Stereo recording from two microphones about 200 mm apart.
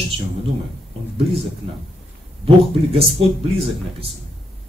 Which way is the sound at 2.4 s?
30° right (ahead or behind).